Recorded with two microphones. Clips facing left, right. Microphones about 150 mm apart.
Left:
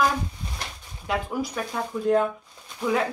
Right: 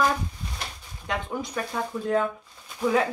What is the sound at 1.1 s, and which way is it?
Speech, 5° left (ahead or behind).